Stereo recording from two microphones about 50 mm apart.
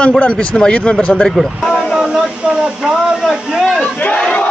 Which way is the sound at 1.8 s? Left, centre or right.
Centre.